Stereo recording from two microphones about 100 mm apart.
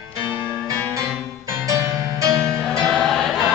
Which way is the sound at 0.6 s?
30° right (ahead or behind).